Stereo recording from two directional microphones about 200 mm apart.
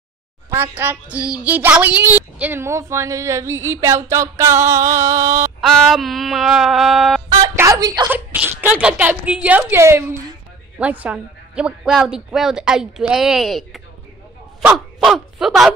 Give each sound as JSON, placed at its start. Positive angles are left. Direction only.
{"t": 0.5, "sound": "a sound", "side_deg": -10}
{"t": 5.6, "sound": "a woman's voice", "side_deg": 0}
{"t": 7.4, "sound": "a woman's voice", "side_deg": -15}
{"t": 8.1, "sound": "a sound", "side_deg": -10}
{"t": 10.8, "sound": "a woman's voice", "side_deg": -5}
{"t": 15.0, "sound": "a woman's voice", "side_deg": 0}